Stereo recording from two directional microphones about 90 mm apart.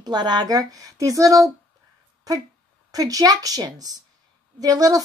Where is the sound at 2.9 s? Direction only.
45° right (ahead or behind).